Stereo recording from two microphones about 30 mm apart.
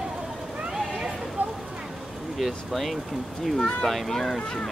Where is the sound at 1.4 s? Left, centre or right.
Right.